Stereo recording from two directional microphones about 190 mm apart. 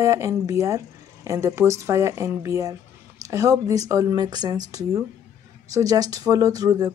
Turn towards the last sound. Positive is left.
turn(degrees=-20)  # may be behind; listen again after turning